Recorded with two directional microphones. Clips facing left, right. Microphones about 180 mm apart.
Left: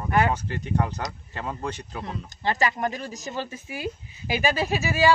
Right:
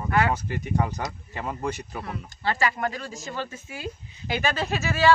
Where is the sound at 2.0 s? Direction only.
20° left (ahead or behind).